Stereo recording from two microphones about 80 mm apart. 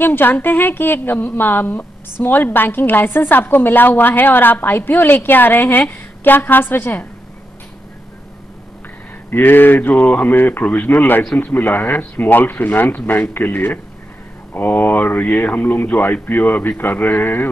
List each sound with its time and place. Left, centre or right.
0.0 s a woman's voice: left
9.3 s a woman's voice: left